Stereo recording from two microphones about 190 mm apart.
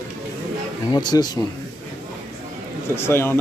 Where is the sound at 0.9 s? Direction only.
20° left (ahead or behind).